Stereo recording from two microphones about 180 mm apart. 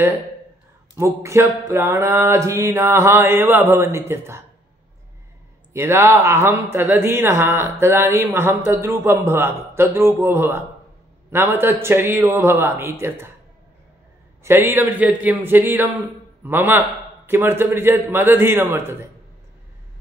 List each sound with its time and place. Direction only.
0.9 s a man's voice: 15° right (ahead or behind)
5.7 s a man's voice: 15° right (ahead or behind)
14.4 s a man's voice: 15° right (ahead or behind)